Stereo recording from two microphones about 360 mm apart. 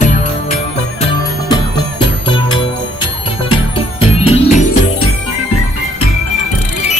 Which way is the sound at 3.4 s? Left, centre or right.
Centre.